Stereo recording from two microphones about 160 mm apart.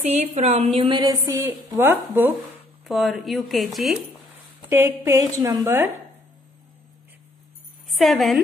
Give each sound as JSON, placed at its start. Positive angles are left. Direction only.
{"t": 0.0, "sound": "a woman's voice", "side_deg": -40}
{"t": 1.2, "sound": "a woman's voice", "side_deg": -15}
{"t": 2.9, "sound": "speech", "side_deg": 0}
{"t": 4.6, "sound": "a woman's voice", "side_deg": -15}
{"t": 7.9, "sound": "speech", "side_deg": 0}